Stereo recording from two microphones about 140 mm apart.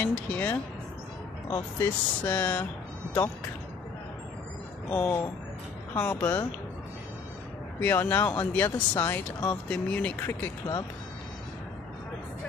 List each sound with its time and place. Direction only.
0.0 s speech: 10° left (ahead or behind)
4.9 s speech: 10° left (ahead or behind)
7.8 s speech: 15° left (ahead or behind)